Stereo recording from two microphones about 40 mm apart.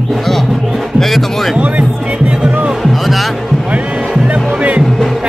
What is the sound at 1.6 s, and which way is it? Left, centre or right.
Music, right.